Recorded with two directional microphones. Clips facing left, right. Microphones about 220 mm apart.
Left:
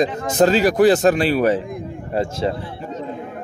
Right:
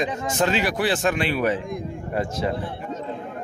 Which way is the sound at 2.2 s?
25° left (ahead or behind).